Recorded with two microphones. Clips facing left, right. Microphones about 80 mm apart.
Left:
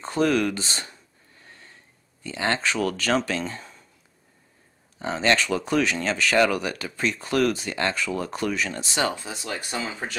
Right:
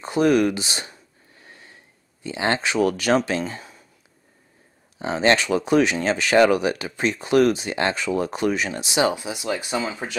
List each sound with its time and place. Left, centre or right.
0.0 s speech: centre
1.4 s a sound: centre
2.2 s speech: centre
4.9 s speech: centre